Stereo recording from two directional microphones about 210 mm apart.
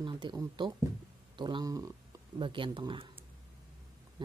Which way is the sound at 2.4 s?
25° right (ahead or behind).